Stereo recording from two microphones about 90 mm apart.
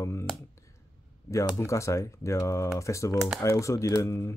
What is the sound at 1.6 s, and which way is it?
Speech, 35° left (ahead or behind).